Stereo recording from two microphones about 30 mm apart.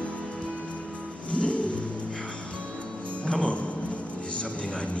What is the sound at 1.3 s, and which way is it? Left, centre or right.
Music, left.